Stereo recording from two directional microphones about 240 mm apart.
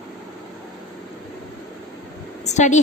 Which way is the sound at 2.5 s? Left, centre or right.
Left.